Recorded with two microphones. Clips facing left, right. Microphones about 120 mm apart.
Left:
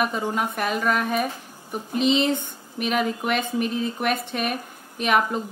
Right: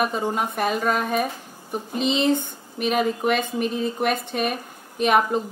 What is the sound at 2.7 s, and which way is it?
A woman's voice, 25° right (ahead or behind).